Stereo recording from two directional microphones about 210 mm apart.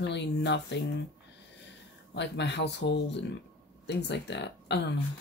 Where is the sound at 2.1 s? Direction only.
55° left (ahead or behind).